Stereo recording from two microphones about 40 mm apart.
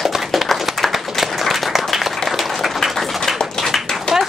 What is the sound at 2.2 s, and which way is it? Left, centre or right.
Applause, centre.